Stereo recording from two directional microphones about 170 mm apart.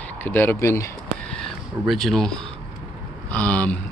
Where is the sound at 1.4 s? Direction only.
Centre (ahead or behind).